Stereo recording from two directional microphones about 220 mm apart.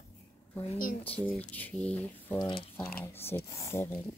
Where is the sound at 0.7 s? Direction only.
40° left (ahead or behind).